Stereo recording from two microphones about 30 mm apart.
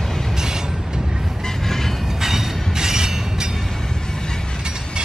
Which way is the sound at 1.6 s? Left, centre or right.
Centre.